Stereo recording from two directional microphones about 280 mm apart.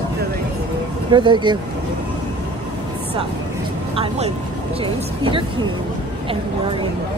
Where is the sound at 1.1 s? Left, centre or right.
Centre.